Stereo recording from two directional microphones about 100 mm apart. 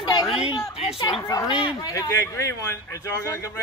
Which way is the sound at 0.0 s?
45° left (ahead or behind).